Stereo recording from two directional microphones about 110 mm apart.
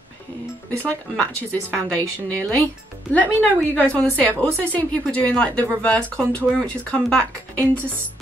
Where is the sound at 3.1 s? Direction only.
15° left (ahead or behind).